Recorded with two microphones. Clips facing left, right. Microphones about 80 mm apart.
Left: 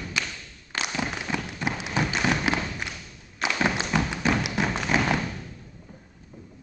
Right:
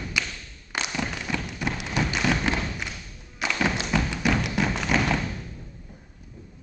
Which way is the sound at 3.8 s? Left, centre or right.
Left.